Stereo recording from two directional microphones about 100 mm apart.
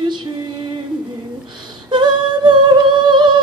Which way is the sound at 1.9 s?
50° right (ahead or behind).